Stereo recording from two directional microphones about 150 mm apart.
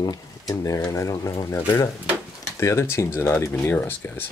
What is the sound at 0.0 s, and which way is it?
Speech, 25° left (ahead or behind).